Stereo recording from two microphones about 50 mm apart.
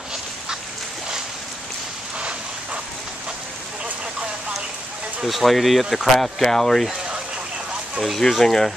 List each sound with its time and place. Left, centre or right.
2.1 s a sound: right
5.2 s speech: centre
8.0 s speech: centre